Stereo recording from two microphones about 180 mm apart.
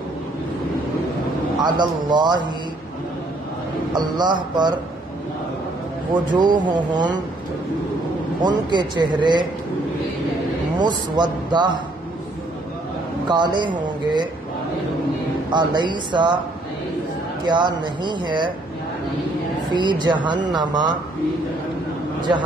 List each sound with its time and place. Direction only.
1.6 s a man's voice: 25° right (ahead or behind)
3.9 s a man's voice: 25° right (ahead or behind)
6.3 s a man's voice: 25° right (ahead or behind)
8.4 s a man's voice: 25° right (ahead or behind)
10.8 s a man's voice: 25° right (ahead or behind)
13.3 s a man's voice: 25° right (ahead or behind)
15.5 s a man's voice: 25° right (ahead or behind)
17.5 s a man's voice: 25° right (ahead or behind)
19.7 s a man's voice: 25° right (ahead or behind)